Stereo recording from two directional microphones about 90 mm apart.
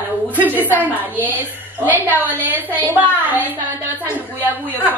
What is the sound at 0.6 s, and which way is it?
A woman's voice, 20° right (ahead or behind).